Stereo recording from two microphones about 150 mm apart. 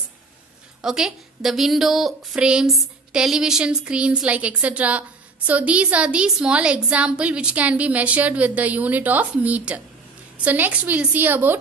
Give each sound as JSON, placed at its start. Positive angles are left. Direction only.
{"t": 0.8, "sound": "a woman's voice", "side_deg": -5}